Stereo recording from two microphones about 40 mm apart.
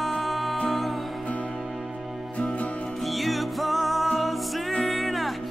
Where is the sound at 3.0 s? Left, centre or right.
Centre.